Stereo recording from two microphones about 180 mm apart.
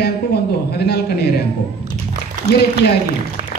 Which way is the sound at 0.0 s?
65° left (ahead or behind).